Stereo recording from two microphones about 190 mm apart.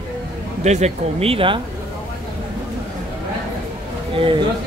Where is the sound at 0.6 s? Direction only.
35° right (ahead or behind).